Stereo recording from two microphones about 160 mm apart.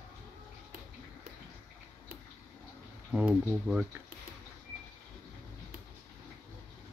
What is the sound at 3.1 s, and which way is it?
Speech, 5° right (ahead or behind).